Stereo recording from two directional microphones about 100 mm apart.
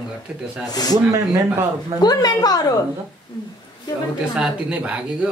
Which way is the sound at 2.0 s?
40° left (ahead or behind).